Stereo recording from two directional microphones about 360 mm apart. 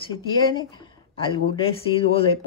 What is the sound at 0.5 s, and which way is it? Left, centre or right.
Speech, centre.